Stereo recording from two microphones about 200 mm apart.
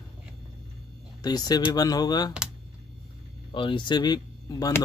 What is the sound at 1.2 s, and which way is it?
Speech, 20° left (ahead or behind).